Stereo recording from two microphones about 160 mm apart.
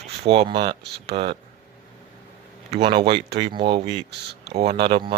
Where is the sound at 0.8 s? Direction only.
90° right.